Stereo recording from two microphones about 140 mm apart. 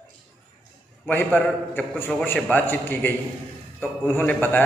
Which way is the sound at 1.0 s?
15° left (ahead or behind).